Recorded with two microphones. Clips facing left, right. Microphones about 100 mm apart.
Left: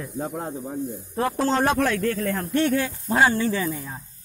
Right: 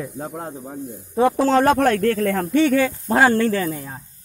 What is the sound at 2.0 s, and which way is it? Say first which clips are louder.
Speech: right 5 dB; 75° right (ahead or behind).